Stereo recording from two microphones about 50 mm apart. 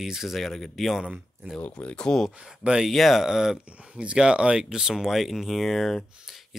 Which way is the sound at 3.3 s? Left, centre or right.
Centre.